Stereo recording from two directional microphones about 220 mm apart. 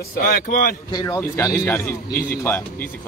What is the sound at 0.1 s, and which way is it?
Speech, 40° left (ahead or behind).